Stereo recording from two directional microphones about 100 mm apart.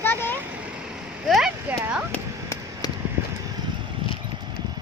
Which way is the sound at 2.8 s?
45° left (ahead or behind).